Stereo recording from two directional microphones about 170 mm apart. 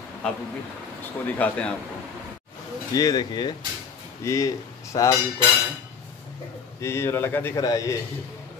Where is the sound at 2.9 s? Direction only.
20° left (ahead or behind).